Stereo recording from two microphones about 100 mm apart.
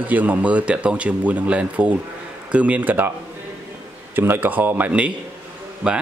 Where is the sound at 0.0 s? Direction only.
15° right (ahead or behind).